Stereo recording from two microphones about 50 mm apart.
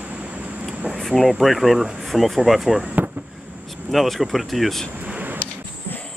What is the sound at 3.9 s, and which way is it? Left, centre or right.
Speech, centre.